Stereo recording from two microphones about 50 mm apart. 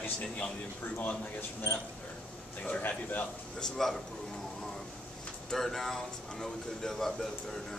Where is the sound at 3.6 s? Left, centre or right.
Centre.